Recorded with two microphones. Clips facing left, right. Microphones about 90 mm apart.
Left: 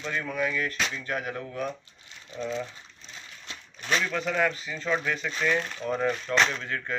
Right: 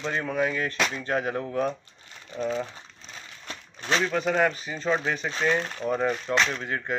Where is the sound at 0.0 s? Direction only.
30° right (ahead or behind).